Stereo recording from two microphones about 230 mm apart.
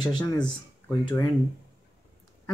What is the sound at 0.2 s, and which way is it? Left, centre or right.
Speech, centre.